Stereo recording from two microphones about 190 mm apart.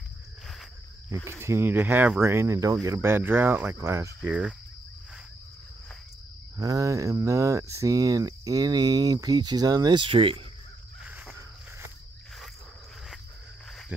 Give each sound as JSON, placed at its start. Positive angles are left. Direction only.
{"t": 1.4, "sound": "speech", "side_deg": -10}
{"t": 4.2, "sound": "cricket", "side_deg": -5}
{"t": 6.6, "sound": "speech", "side_deg": -15}
{"t": 11.1, "sound": "a sound", "side_deg": -10}